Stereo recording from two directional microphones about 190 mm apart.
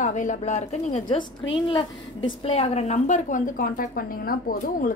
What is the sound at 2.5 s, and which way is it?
A woman's voice, 35° left (ahead or behind).